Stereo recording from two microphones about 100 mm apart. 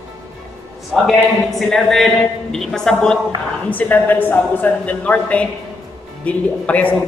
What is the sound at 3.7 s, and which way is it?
Speech, 15° left (ahead or behind).